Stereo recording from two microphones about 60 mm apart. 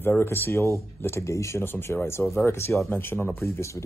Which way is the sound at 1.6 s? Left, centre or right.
Left.